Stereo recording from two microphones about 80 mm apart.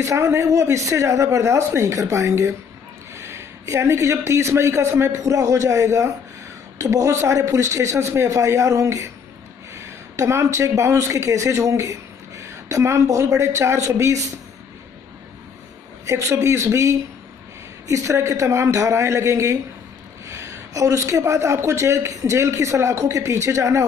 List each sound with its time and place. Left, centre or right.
0.0 s a woman's voice: right
16.1 s a woman's voice: right